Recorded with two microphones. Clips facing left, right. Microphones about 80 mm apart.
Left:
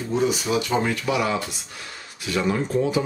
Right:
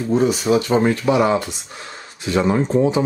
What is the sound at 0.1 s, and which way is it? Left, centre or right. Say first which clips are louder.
Speech: right 6 dB; right.